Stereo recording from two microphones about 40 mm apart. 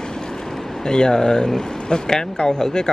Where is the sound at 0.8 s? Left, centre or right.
Centre.